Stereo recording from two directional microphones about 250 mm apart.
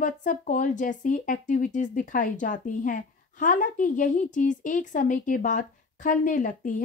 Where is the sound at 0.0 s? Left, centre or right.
Left.